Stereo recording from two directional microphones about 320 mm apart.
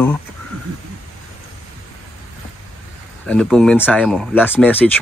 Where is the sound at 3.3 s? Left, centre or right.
Centre.